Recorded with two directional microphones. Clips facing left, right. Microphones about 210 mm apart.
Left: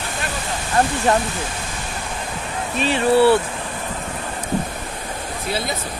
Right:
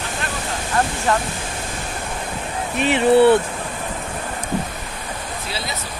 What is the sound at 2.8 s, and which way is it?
Speech, 20° right (ahead or behind).